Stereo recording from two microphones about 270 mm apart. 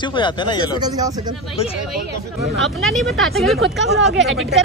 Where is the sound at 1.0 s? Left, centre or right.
Centre.